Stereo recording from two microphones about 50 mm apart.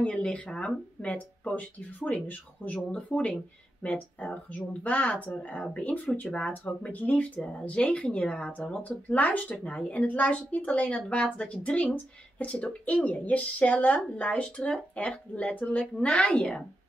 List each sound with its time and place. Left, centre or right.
0.0 s a woman's voice: left
1.0 s a woman's voice: left